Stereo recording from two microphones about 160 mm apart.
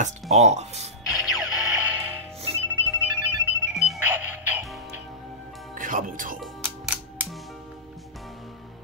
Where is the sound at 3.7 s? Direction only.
Centre (ahead or behind).